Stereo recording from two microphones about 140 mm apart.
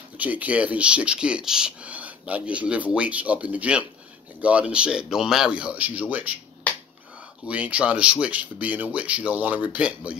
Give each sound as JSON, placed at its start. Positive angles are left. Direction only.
{"t": 0.2, "sound": "speech", "side_deg": -10}
{"t": 7.4, "sound": "speech", "side_deg": -10}